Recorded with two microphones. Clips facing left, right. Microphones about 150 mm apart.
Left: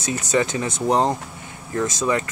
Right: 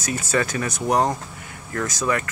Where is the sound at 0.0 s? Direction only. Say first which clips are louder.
Left 2 dB; 20° left (ahead or behind).